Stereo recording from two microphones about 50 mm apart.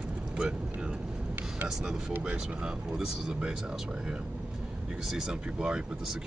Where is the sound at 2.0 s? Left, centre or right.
Right.